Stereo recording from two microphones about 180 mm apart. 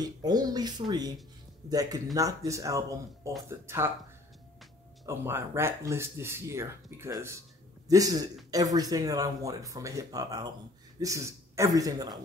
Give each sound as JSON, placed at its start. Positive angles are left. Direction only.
{"t": 0.0, "sound": "speech", "side_deg": -20}
{"t": 5.0, "sound": "speech", "side_deg": -15}